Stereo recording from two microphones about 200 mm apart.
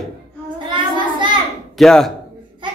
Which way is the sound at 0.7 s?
25° right (ahead or behind).